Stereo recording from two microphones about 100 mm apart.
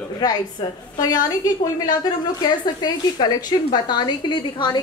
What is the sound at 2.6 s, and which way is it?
Speech, 45° left (ahead or behind).